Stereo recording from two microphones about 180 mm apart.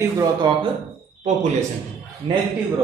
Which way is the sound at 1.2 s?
40° right (ahead or behind).